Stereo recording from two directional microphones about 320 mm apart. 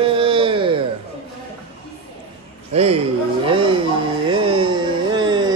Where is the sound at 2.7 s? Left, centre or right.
Centre.